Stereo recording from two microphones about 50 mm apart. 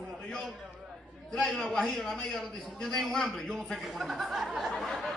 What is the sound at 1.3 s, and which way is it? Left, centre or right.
A man's voice, centre.